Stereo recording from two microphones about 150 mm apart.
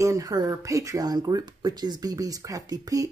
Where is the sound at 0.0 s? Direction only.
20° right (ahead or behind).